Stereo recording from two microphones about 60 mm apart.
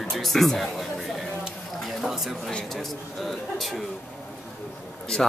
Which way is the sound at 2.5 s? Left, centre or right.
Centre.